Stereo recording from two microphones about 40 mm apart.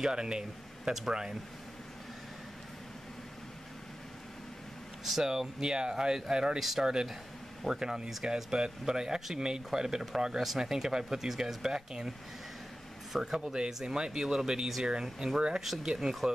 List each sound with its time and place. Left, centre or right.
0.0 s speech: centre
5.0 s a man's voice: centre
13.1 s speech: centre
15.6 s speech: centre